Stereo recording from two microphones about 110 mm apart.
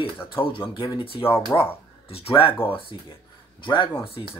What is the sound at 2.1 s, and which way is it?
Speech, 60° left (ahead or behind).